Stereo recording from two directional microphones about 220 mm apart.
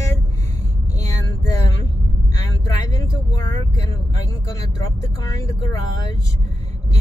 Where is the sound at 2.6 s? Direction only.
15° left (ahead or behind).